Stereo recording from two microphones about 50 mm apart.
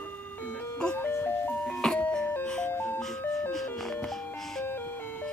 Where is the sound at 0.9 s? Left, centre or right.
Left.